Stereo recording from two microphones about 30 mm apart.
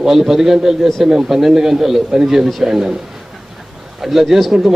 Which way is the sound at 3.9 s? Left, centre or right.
Centre.